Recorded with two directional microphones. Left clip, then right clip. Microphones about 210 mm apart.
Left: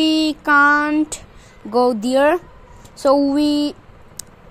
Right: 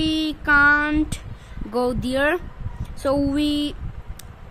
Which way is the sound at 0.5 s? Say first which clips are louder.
Left 3 dB; centre (ahead or behind).